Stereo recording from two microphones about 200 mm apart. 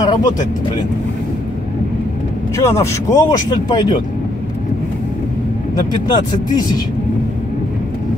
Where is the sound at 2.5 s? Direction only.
15° left (ahead or behind).